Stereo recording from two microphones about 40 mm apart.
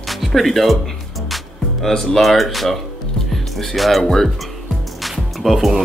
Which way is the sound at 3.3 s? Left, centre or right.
Centre.